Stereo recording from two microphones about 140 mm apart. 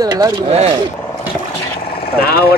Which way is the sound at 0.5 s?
50° right (ahead or behind).